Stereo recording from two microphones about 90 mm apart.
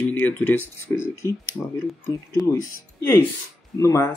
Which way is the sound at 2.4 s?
30° left (ahead or behind).